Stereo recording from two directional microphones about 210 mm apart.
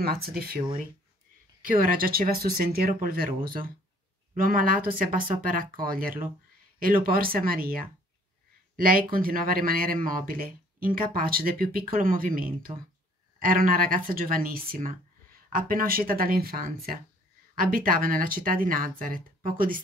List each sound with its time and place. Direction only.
0.0 s speech: 45° right (ahead or behind)
1.6 s speech: 40° right (ahead or behind)
8.8 s speech: 45° right (ahead or behind)